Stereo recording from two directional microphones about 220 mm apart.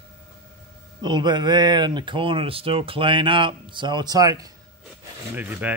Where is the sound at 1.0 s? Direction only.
20° right (ahead or behind).